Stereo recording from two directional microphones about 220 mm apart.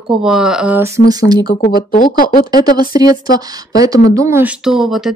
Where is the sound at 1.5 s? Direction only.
35° left (ahead or behind).